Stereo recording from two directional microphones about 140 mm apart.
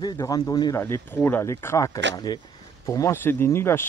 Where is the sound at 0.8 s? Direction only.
15° left (ahead or behind).